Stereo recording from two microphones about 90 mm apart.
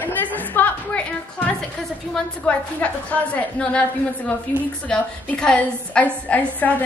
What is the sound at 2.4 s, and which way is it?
A woman's voice, 15° left (ahead or behind).